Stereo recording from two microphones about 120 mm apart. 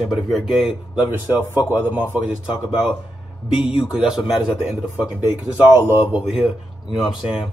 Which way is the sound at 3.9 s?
5° right (ahead or behind).